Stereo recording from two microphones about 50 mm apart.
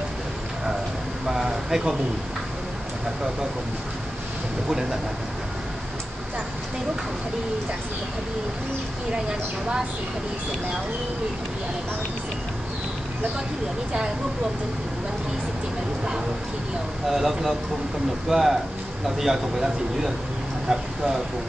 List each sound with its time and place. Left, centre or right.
1.2 s speech: centre
4.6 s speech: centre
9.1 s speech: centre
17.1 s speech: centre